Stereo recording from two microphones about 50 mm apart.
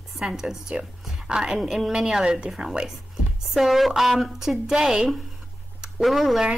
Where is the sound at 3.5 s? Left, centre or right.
Centre.